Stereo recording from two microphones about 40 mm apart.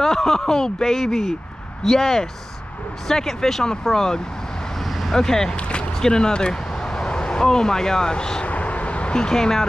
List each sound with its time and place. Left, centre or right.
0.0 s speech: centre
5.6 s a sound: left
5.9 s speech: centre
8.5 s vehicle: left; by 9.7 s centre